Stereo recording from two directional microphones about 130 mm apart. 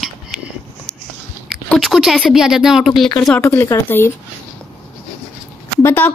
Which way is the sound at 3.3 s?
20° left (ahead or behind).